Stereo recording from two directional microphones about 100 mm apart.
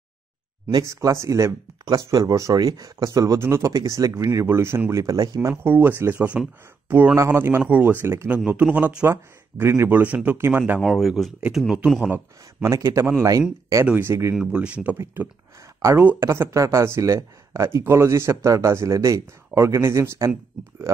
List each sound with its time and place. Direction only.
0.8 s speech: 30° right (ahead or behind)
5.5 s speech: 20° right (ahead or behind)
9.0 s speech: 25° right (ahead or behind)
10.8 s speech: centre (ahead or behind)
12.6 s speech: 30° right (ahead or behind)
14.3 s speech: 5° right (ahead or behind)
16.0 s speech: 20° right (ahead or behind)